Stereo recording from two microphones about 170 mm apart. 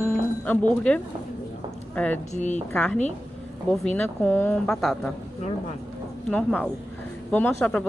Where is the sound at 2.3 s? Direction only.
45° left (ahead or behind).